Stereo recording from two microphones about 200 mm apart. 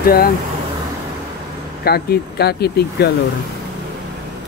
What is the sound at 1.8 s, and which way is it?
Speech, 50° left (ahead or behind).